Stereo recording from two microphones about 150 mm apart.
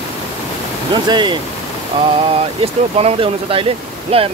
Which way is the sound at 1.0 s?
30° right (ahead or behind).